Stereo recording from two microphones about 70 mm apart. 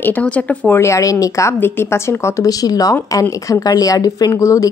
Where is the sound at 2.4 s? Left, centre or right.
Left.